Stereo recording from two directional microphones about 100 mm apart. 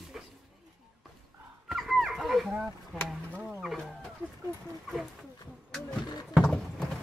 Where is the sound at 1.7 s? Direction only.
Centre (ahead or behind).